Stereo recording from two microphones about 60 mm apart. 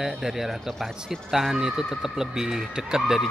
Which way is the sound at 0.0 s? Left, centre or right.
Centre.